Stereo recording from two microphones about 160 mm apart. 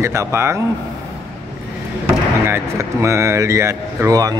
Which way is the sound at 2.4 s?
15° right (ahead or behind).